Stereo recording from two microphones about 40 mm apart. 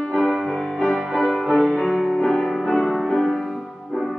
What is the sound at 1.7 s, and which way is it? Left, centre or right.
Music, centre.